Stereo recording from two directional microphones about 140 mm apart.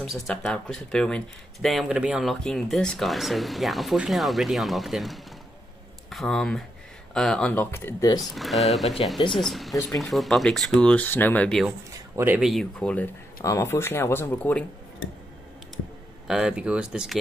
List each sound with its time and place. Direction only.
0.0 s speech: centre (ahead or behind)
8.2 s speech: centre (ahead or behind)
16.3 s speech: 5° right (ahead or behind)